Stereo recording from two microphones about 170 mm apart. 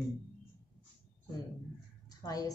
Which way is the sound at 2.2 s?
20° left (ahead or behind).